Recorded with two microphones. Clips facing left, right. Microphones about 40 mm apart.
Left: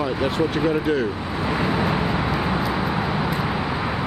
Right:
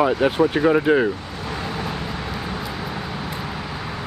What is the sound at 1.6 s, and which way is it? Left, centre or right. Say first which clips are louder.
Vehicle: left 6 dB; left.